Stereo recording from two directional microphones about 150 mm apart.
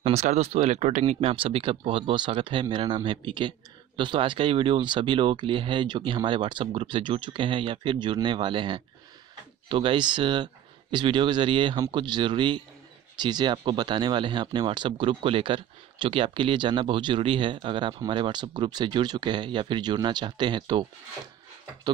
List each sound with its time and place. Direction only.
0.0 s speech: 45° right (ahead or behind); by 20.8 s 30° right (ahead or behind)